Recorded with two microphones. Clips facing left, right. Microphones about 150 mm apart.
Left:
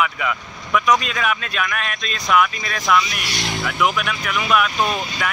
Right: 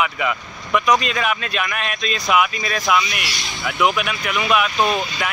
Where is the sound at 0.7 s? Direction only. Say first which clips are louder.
Right 1 dB; centre (ahead or behind).